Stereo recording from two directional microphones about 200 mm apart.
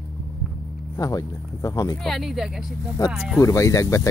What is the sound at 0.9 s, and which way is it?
Speech, 15° left (ahead or behind).